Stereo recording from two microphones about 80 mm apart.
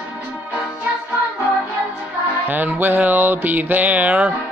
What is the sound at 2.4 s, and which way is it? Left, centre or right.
Music, right.